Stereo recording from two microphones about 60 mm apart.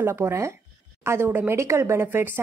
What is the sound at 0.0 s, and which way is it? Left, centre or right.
A woman's voice, right.